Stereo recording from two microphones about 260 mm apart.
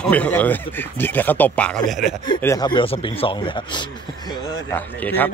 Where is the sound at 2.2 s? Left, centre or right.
Centre.